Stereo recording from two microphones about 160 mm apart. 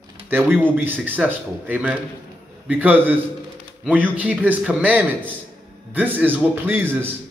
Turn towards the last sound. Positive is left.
turn(degrees=-15)  # may be behind; listen again after turning